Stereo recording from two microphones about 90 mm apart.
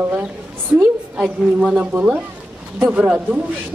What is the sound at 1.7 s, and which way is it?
A woman's voice, 15° right (ahead or behind).